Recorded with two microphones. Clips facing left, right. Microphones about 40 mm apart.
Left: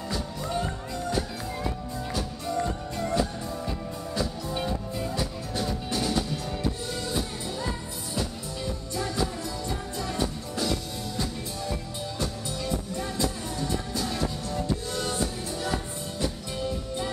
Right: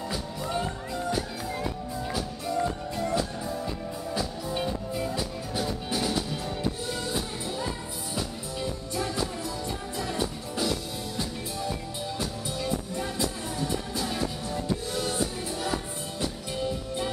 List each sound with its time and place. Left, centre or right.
0.1 s music: centre
12.2 s music: centre